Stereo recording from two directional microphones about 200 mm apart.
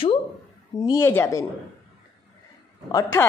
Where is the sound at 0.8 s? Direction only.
15° left (ahead or behind).